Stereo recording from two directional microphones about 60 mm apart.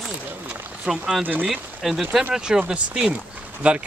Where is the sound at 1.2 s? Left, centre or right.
Right.